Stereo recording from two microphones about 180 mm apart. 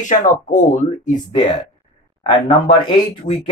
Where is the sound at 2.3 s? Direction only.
25° left (ahead or behind).